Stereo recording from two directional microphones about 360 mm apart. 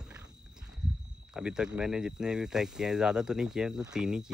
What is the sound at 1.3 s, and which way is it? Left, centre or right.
Speech, centre.